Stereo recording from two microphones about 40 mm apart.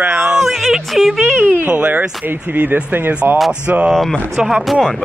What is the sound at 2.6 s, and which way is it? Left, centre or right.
Speech, right.